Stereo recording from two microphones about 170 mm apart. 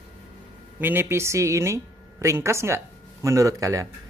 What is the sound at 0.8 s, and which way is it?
A woman's voice, 15° right (ahead or behind).